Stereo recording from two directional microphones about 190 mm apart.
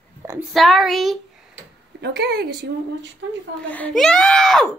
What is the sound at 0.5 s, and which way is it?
Speech, centre (ahead or behind).